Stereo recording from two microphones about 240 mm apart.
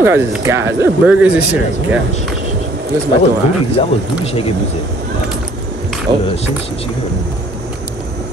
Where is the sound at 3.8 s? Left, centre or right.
Left.